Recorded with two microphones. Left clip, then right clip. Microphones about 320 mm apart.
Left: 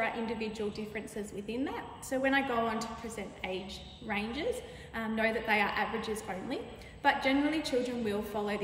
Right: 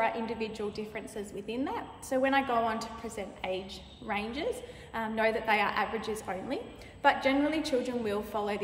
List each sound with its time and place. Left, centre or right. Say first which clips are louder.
0.0 s a woman's voice: right 3 dB; centre